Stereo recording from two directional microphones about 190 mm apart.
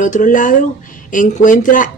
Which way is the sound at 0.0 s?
45° left (ahead or behind).